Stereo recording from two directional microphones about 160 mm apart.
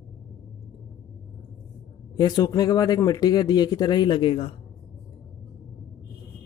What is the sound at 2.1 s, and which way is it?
Speech, 25° left (ahead or behind).